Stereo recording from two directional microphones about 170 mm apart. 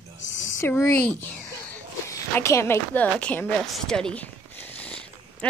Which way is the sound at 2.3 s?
15° left (ahead or behind).